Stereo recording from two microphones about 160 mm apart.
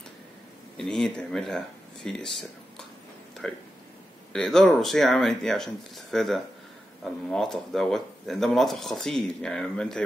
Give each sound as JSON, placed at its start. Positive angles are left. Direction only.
{"t": 0.7, "sound": "speech", "side_deg": 5}
{"t": 3.4, "sound": "speech", "side_deg": 5}